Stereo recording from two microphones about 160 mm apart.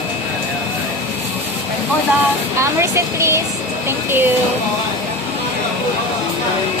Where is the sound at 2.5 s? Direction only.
15° right (ahead or behind).